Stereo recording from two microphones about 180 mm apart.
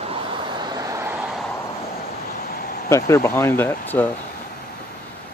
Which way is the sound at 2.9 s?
15° left (ahead or behind).